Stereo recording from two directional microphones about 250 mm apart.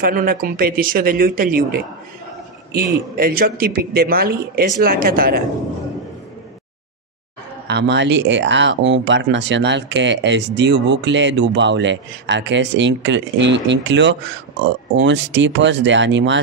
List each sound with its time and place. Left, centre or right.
0.0 s speech: right
7.6 s speech: right